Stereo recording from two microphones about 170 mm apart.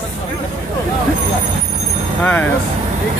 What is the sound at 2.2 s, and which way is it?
Speech, 10° left (ahead or behind).